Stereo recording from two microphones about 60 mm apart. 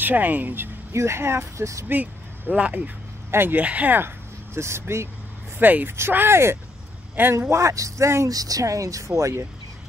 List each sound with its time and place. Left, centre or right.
0.0 s speech: right
0.9 s speech: right
2.5 s speech: right
3.3 s speech: right
3.5 s speech: right
4.6 s speech: right
5.6 s speech: right
7.3 s speech: right
8.3 s speech: right